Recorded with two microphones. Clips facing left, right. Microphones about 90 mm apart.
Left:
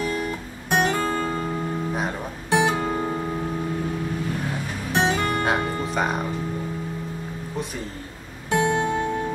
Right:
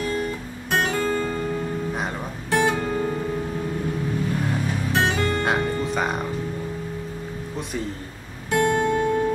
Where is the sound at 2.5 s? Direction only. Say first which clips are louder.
Even; 20° left (ahead or behind).